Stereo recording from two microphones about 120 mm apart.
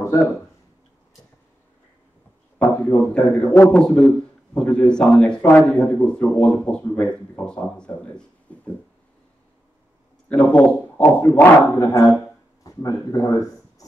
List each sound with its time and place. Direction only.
2.6 s a man's voice: 15° left (ahead or behind)
8.5 s a sound: 10° left (ahead or behind)
10.3 s a man's voice: 10° left (ahead or behind); by 13.8 s 30° left (ahead or behind)